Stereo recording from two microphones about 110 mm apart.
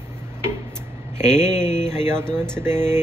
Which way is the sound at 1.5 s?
90° left.